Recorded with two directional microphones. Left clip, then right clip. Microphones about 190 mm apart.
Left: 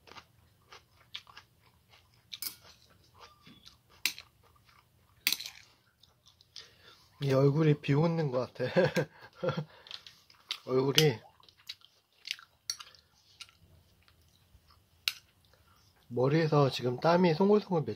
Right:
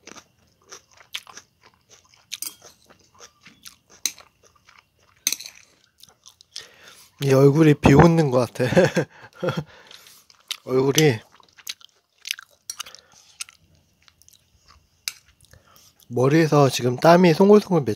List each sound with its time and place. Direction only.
0.7 s crunch: 45° right (ahead or behind)
2.9 s biting: 45° right (ahead or behind)
5.9 s chewing: 45° right (ahead or behind)
16.2 s speech: 45° right (ahead or behind)